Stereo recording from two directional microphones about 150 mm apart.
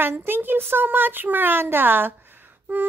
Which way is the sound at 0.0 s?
15° right (ahead or behind).